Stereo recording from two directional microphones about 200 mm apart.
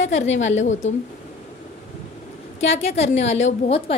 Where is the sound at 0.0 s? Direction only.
35° left (ahead or behind).